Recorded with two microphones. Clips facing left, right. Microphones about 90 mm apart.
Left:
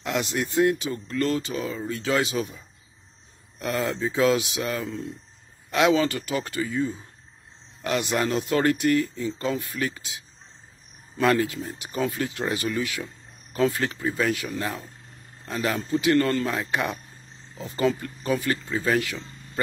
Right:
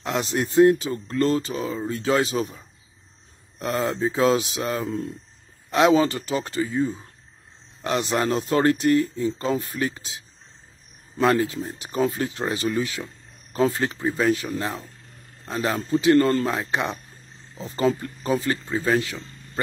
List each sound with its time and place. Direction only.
0.0 s speech: 30° right (ahead or behind)